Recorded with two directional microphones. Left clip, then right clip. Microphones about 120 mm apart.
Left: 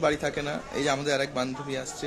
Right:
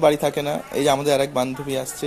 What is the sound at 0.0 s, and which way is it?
A man's voice, 45° right (ahead or behind).